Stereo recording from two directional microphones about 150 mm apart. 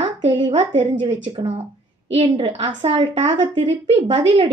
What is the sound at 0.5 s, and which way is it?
A woman's voice, 45° right (ahead or behind).